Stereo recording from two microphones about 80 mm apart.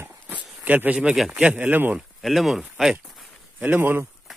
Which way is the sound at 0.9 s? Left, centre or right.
Centre.